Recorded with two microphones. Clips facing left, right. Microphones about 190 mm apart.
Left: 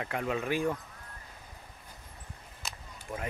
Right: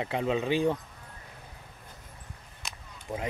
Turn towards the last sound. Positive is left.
turn(degrees=-30)  # may be behind; listen again after turning